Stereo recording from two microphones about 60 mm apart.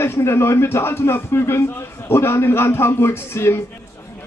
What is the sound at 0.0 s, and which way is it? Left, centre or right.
Speech, left.